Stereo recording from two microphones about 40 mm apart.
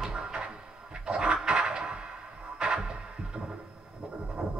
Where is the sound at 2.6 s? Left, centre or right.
Centre.